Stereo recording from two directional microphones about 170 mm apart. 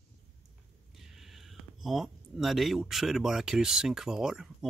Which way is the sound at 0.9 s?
Centre (ahead or behind).